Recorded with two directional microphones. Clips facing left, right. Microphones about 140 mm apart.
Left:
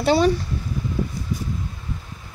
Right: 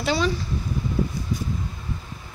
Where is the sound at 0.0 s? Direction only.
55° left (ahead or behind).